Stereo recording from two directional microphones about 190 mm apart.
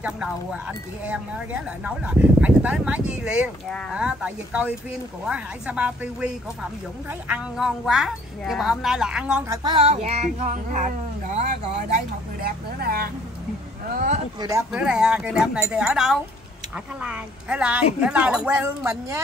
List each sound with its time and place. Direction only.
0.0 s speech: 5° right (ahead or behind)
9.5 s child singing: 20° right (ahead or behind)
12.4 s speech: 55° right (ahead or behind)
13.9 s child singing: 40° right (ahead or behind)
14.4 s speech: 15° right (ahead or behind)
14.7 s speech: 5° right (ahead or behind)